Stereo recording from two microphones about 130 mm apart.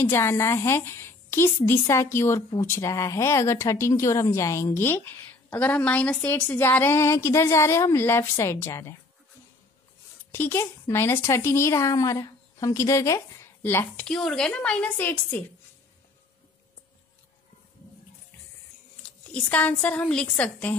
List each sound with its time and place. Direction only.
0.0 s speech: 20° left (ahead or behind)
10.3 s a woman's voice: 20° left (ahead or behind)
19.3 s a woman's voice: 15° left (ahead or behind)